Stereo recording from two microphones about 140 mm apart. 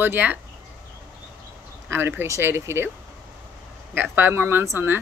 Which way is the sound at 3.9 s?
15° right (ahead or behind).